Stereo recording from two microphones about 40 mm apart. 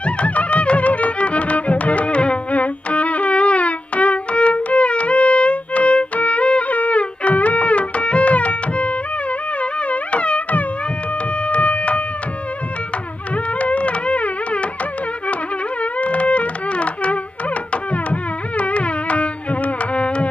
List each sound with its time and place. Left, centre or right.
0.0 s music: left
13.6 s music: left
15.8 s a sound: left
17.9 s carnatic music: left